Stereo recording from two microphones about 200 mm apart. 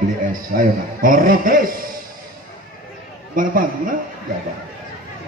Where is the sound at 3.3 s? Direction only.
45° right (ahead or behind).